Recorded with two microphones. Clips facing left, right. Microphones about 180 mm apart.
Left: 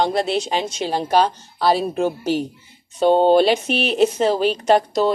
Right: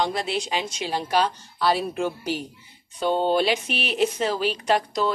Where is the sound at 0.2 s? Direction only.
30° left (ahead or behind).